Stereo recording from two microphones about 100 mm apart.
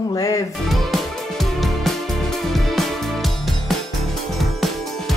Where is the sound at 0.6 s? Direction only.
Centre (ahead or behind).